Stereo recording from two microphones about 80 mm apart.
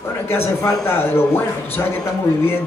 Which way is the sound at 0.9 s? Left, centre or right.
Left.